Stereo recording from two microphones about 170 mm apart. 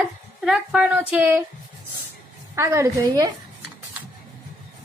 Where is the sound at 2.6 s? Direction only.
15° right (ahead or behind).